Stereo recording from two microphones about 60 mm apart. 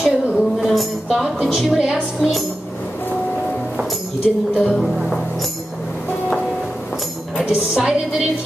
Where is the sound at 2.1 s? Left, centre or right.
Centre.